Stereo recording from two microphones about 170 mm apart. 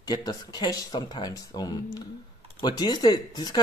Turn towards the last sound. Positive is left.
turn(degrees=25)  # may be behind; listen again after turning